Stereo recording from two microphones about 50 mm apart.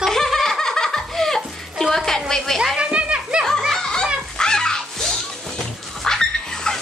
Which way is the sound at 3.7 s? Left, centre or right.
Centre.